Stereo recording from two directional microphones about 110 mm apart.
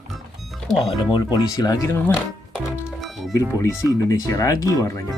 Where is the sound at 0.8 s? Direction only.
40° left (ahead or behind).